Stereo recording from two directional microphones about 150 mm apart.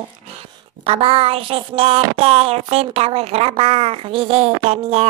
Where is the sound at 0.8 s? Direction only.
40° right (ahead or behind).